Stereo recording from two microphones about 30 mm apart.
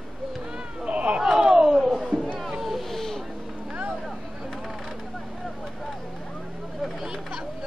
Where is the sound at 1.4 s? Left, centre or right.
Centre.